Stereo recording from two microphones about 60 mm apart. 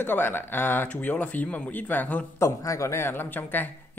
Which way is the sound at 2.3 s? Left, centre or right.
Left.